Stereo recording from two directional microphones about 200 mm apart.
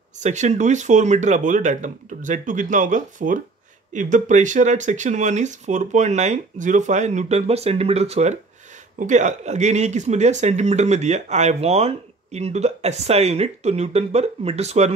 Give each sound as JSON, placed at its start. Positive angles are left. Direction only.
{"t": 0.2, "sound": "speech", "side_deg": -35}